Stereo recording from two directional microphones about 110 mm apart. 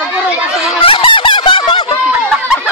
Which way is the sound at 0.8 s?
55° left (ahead or behind).